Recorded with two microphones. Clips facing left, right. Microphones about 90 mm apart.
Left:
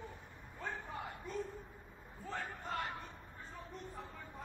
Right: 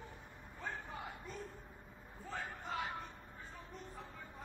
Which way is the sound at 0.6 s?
Centre (ahead or behind).